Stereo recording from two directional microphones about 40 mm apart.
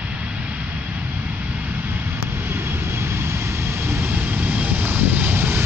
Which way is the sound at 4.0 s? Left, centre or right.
Right.